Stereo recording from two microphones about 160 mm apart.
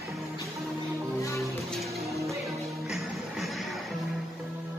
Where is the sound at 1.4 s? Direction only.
Centre (ahead or behind).